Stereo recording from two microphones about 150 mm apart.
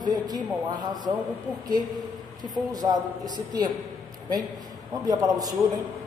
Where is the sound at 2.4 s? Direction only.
25° right (ahead or behind).